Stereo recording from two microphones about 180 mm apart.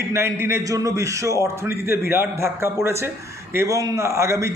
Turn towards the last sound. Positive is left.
turn(degrees=-15)  # may be behind; listen again after turning